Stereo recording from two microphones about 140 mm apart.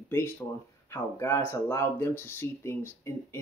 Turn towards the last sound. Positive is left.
turn(degrees=20)  # may be behind; listen again after turning